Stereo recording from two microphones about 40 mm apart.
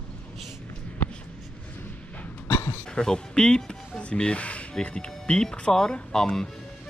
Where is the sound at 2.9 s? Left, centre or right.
Left.